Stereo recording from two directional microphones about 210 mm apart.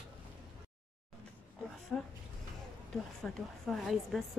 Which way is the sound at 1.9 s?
5° left (ahead or behind).